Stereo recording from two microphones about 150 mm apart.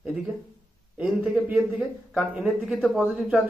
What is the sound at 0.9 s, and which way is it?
A man's voice, 10° right (ahead or behind).